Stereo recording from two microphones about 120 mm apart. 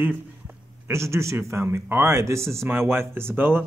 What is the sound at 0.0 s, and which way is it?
A man's voice, 15° right (ahead or behind).